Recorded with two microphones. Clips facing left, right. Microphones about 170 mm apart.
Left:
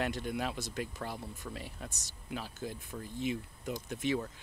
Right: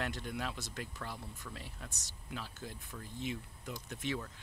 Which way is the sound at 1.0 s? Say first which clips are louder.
Left 2 dB; 25° left (ahead or behind).